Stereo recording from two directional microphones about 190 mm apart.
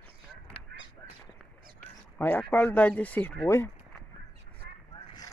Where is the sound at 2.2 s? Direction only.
10° left (ahead or behind).